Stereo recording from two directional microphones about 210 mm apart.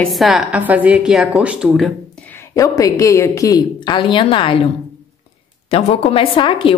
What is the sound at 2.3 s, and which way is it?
A woman's voice, 15° left (ahead or behind).